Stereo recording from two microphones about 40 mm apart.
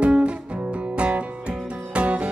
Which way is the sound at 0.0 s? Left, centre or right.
Right.